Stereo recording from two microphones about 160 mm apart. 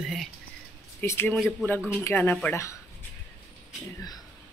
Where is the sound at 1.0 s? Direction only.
15° left (ahead or behind).